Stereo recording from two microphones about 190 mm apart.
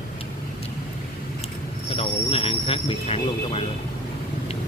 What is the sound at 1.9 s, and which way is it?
Speech, 30° left (ahead or behind).